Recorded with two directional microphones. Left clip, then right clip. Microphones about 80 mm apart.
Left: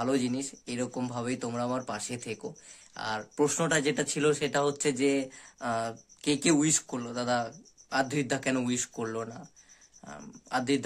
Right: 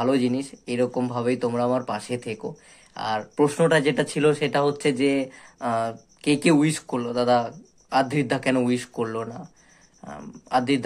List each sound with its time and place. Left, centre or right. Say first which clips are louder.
0.0 s speech: right 7 dB; left